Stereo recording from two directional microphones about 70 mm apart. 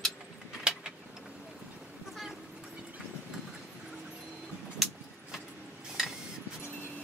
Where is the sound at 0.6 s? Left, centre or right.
Centre.